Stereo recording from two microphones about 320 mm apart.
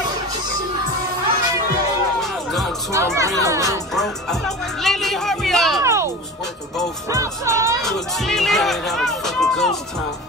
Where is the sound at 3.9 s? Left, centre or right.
Centre.